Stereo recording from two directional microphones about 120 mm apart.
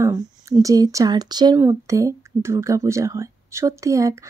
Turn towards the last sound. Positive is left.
turn(degrees=-25)  # may be behind; listen again after turning